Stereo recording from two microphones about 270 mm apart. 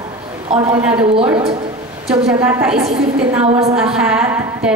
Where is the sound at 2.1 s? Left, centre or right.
Centre.